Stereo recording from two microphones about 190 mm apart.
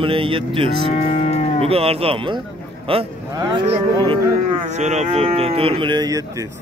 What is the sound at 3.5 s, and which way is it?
Speech, 30° right (ahead or behind).